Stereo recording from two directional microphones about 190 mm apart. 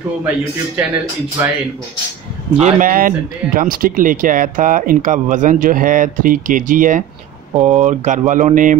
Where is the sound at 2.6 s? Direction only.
45° right (ahead or behind).